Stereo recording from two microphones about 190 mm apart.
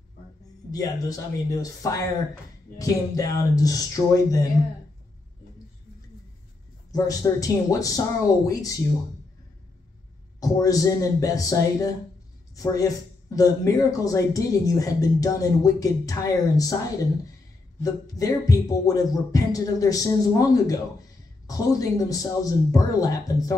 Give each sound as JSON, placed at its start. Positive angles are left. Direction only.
{"t": 0.7, "sound": "speech", "side_deg": 20}
{"t": 6.9, "sound": "speech", "side_deg": 20}
{"t": 10.4, "sound": "music", "side_deg": 20}
{"t": 12.5, "sound": "speech", "side_deg": 20}
{"t": 17.7, "sound": "music", "side_deg": 20}